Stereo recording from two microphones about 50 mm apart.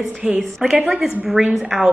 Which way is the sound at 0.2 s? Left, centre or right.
Centre.